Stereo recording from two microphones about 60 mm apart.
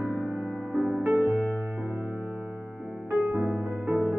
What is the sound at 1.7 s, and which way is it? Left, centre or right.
Music, right.